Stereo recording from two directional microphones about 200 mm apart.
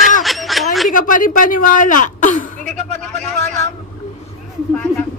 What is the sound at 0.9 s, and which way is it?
Speech, 40° left (ahead or behind).